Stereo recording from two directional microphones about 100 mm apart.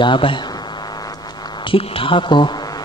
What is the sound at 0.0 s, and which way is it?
Speech, 55° left (ahead or behind).